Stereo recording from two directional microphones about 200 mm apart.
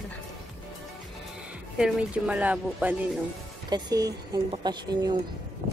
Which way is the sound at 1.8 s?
5° right (ahead or behind).